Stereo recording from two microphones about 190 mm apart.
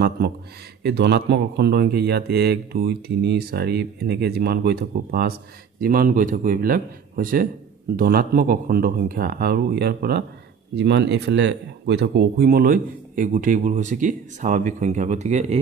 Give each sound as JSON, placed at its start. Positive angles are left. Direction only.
{"t": 0.8, "sound": "speech", "side_deg": -60}